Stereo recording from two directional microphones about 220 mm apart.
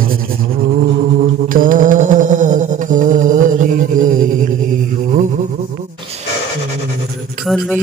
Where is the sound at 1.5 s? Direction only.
40° right (ahead or behind).